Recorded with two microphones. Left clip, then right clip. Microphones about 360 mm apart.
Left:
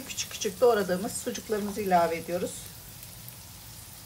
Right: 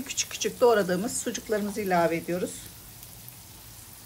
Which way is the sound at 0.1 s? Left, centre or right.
Right.